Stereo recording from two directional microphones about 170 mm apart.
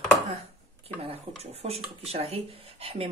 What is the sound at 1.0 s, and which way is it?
Speech, 35° right (ahead or behind).